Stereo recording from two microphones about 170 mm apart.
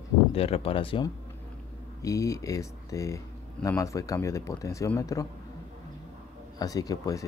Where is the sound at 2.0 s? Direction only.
20° left (ahead or behind).